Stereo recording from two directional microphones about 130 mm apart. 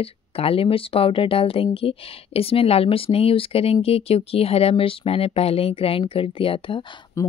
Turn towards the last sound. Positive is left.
turn(degrees=25)  # may be behind; listen again after turning